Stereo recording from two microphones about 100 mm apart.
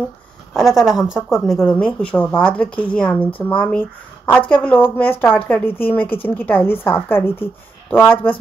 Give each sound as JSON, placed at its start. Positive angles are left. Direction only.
{"t": 0.5, "sound": "a woman's voice", "side_deg": 0}